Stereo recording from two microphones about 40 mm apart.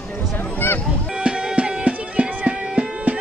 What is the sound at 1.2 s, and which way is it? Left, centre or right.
Music, right.